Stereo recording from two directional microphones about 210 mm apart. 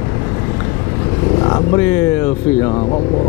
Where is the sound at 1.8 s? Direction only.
15° left (ahead or behind).